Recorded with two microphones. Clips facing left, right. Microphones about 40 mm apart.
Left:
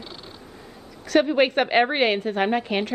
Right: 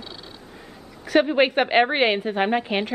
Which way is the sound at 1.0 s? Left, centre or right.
Centre.